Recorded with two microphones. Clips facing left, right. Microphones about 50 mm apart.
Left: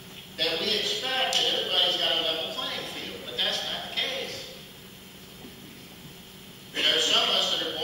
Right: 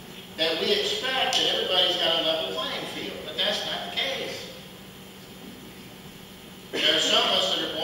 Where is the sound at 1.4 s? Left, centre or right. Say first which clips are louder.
Right 2 dB; centre.